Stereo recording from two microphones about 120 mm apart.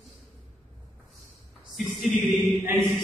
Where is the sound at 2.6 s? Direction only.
20° right (ahead or behind).